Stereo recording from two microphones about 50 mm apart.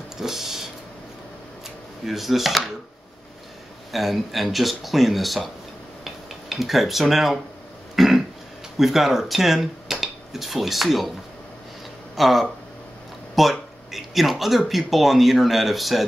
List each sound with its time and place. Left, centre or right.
0.2 s a sound: centre
2.0 s speech: centre
3.9 s speech: centre
6.0 s dishes: centre
7.9 s a sound: centre
8.7 s speech: centre
12.2 s speech: centre
13.4 s a sound: centre
14.7 s speech: centre